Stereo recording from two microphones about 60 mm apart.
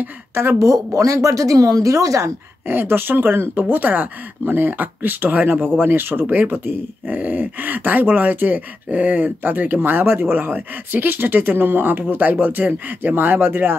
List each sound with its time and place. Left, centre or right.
0.0 s a woman's voice: right
0.6 s speech: right
2.7 s speech: right